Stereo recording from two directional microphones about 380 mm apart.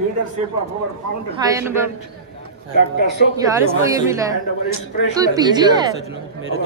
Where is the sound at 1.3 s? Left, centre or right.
Centre.